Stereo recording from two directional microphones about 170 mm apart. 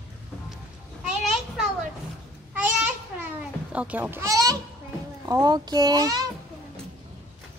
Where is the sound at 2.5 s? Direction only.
10° right (ahead or behind).